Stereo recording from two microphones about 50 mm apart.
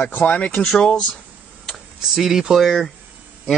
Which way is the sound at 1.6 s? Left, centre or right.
Centre.